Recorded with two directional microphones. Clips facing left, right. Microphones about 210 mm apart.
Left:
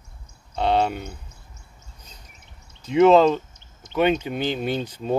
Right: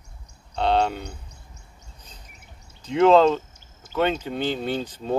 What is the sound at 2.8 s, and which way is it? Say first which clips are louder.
Speech: left 1 dB; 10° left (ahead or behind).